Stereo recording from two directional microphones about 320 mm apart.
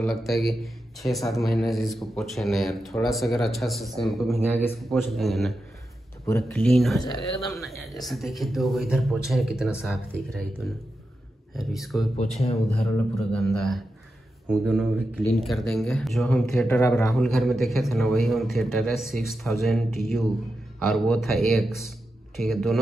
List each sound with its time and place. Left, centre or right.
0.0 s speech: centre
12.2 s speech: centre
12.8 s speech: centre
15.3 s speech: centre